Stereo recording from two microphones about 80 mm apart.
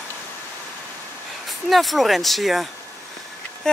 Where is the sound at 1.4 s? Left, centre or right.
Centre.